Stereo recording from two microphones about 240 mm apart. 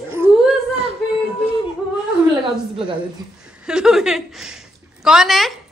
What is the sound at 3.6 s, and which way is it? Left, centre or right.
Chuckle, centre.